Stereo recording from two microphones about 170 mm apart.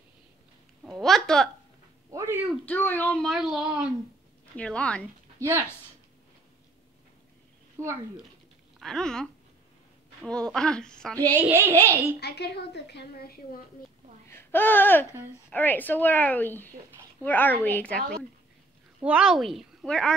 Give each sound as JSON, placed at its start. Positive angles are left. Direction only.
{"t": 0.8, "sound": "a woman's voice", "side_deg": 0}
{"t": 2.0, "sound": "a sound", "side_deg": -15}
{"t": 2.6, "sound": "a child's voice", "side_deg": 10}
{"t": 4.6, "sound": "a woman's voice", "side_deg": 5}
{"t": 5.4, "sound": "a child's voice", "side_deg": -15}
{"t": 7.8, "sound": "a child's voice", "side_deg": -15}
{"t": 8.7, "sound": "a child's voice", "side_deg": 5}
{"t": 11.3, "sound": "a child's voice", "side_deg": -15}
{"t": 12.2, "sound": "a woman's voice", "side_deg": 75}
{"t": 14.3, "sound": "a woman's voice", "side_deg": 10}
{"t": 19.0, "sound": "a child's voice", "side_deg": -5}